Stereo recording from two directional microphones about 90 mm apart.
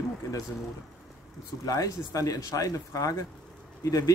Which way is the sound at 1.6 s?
40° left (ahead or behind).